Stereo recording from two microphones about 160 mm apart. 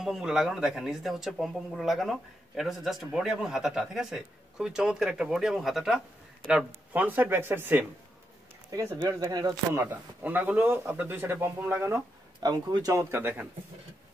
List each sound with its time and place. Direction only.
0.0 s speech: 5° right (ahead or behind)
8.9 s speech: 25° right (ahead or behind)
9.8 s speech: 10° right (ahead or behind)
12.4 s speech: 25° right (ahead or behind)